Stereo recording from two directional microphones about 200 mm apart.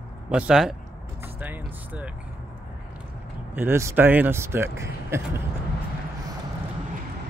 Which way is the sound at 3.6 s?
10° right (ahead or behind).